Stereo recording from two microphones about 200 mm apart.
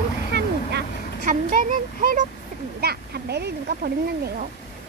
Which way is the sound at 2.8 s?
55° right (ahead or behind).